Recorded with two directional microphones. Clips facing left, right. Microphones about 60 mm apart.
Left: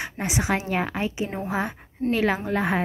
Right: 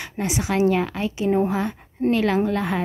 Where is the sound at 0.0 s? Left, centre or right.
Left.